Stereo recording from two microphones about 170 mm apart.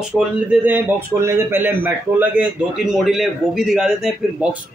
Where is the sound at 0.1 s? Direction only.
10° left (ahead or behind).